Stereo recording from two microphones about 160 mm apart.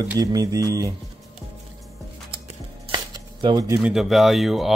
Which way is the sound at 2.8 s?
30° right (ahead or behind).